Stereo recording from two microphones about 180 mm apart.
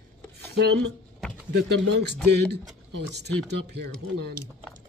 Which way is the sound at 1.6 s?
70° right (ahead or behind).